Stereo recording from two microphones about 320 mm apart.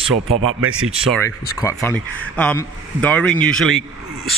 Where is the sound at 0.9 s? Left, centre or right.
Centre.